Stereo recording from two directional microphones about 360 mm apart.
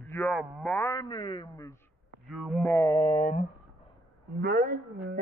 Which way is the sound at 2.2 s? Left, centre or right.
Centre.